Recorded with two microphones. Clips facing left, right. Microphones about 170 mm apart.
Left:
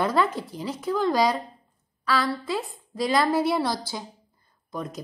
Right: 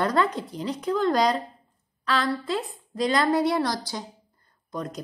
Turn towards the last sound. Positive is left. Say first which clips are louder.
# right 1 dB
turn(degrees=0)  # may be behind; listen again after turning